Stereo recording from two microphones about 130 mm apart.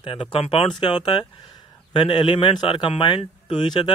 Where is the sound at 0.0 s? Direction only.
40° left (ahead or behind).